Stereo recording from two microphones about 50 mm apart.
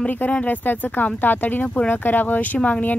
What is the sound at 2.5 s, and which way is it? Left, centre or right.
Speech, left.